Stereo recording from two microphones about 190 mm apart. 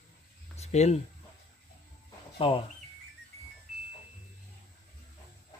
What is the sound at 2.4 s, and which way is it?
Speech, 30° left (ahead or behind).